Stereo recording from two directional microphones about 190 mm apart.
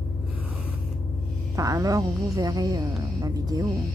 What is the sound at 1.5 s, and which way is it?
A woman's voice, 15° right (ahead or behind).